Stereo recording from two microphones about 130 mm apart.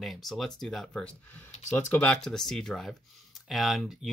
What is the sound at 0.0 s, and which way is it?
Speech, centre (ahead or behind).